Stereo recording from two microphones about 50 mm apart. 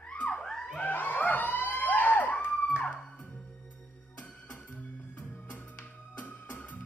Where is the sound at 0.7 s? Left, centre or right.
Left.